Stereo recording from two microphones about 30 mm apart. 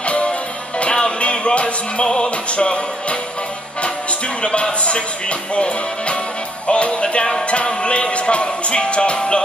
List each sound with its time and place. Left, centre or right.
0.0 s music: left
2.0 s music: left
2.5 s music: left